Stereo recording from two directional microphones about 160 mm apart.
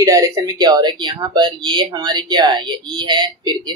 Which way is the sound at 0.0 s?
20° right (ahead or behind).